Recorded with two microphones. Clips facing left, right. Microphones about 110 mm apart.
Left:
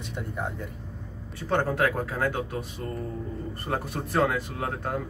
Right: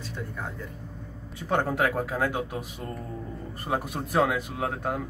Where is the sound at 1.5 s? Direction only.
10° right (ahead or behind).